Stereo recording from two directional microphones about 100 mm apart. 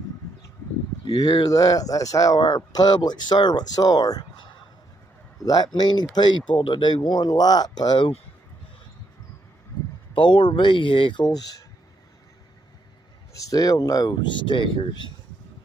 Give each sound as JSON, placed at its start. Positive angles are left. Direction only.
{"t": 1.0, "sound": "speech", "side_deg": 45}
{"t": 5.4, "sound": "speech", "side_deg": 40}
{"t": 10.1, "sound": "speech", "side_deg": 55}
{"t": 13.5, "sound": "speech", "side_deg": 40}